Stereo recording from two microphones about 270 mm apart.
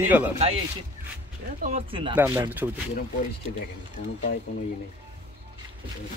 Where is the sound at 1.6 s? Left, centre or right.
Right.